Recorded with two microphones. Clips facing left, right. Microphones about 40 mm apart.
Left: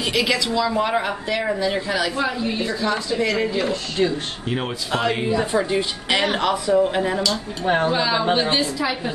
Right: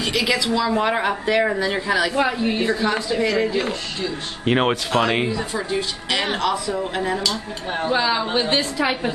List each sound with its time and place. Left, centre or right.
0.0 s speech: centre
0.5 s speech: centre
2.1 s a woman's voice: right
3.2 s speech: centre
4.5 s speech: right
5.3 s speech: centre
7.6 s speech: left
7.9 s speech: centre